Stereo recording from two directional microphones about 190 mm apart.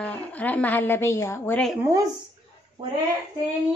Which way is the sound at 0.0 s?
10° left (ahead or behind).